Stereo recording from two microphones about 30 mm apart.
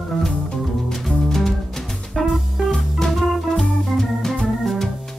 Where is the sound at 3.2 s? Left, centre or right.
Centre.